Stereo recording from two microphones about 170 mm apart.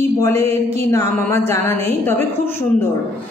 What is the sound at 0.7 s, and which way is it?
A woman's voice, 15° left (ahead or behind).